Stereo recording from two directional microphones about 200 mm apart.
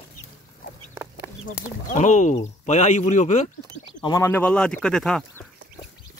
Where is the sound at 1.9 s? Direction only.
40° left (ahead or behind).